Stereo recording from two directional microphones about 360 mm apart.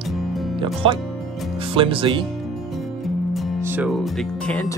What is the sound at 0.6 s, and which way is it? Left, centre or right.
Speech, centre.